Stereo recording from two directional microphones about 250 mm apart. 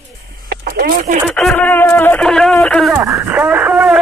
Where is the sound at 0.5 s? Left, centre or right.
Right.